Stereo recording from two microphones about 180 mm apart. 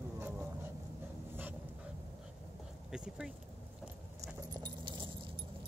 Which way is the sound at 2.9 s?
5° right (ahead or behind).